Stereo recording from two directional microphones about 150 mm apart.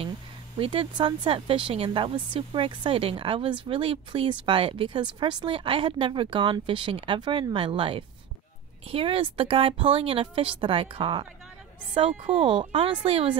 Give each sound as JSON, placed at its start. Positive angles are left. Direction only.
{"t": 0.6, "sound": "a woman's voice", "side_deg": -35}